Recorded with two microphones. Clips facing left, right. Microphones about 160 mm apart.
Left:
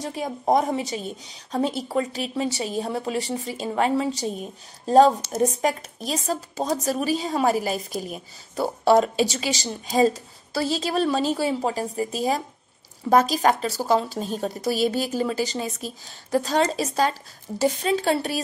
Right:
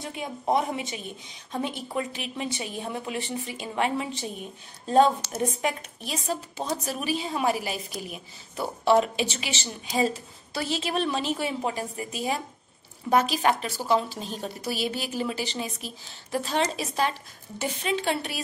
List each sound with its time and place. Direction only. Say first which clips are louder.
0.0 s speech: left 5 dB; 40° left (ahead or behind)